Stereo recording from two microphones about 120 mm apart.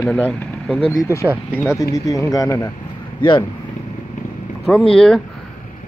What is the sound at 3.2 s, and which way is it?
Speech, 40° left (ahead or behind).